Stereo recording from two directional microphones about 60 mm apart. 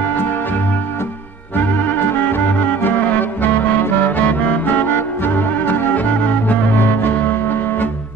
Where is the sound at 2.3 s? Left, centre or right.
Left.